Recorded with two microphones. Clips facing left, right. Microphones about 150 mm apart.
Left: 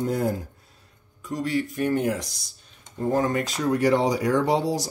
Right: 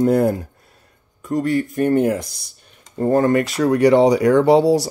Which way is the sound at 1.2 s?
50° right (ahead or behind).